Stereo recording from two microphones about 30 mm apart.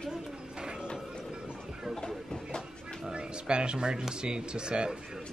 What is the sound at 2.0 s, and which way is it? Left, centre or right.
Speech, left.